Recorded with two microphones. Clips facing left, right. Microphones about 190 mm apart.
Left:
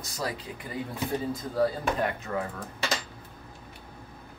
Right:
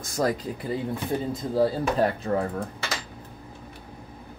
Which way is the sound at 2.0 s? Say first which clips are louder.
Right 6 dB; 35° right (ahead or behind).